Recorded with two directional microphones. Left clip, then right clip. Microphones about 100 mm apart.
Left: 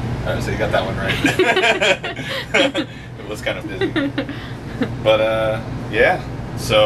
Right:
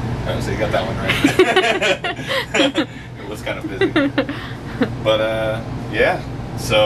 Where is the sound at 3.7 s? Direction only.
30° right (ahead or behind).